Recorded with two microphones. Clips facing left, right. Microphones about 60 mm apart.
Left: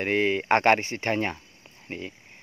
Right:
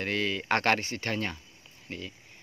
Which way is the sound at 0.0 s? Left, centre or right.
Left.